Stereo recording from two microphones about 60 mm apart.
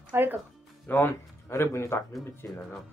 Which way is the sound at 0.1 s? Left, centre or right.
Right.